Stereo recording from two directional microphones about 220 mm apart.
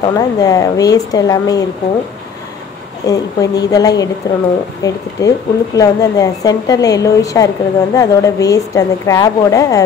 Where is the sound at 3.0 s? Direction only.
15° left (ahead or behind).